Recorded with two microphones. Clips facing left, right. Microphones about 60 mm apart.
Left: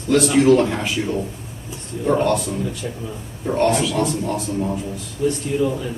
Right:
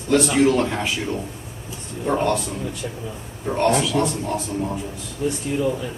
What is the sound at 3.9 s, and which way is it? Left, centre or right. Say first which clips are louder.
Speech: left 1 dB; centre.